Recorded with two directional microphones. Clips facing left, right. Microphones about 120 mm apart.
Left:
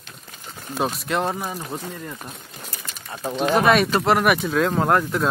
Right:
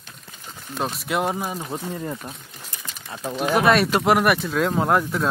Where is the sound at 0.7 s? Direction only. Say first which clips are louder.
Left 2 dB; centre (ahead or behind); by 2.2 s 20° right (ahead or behind).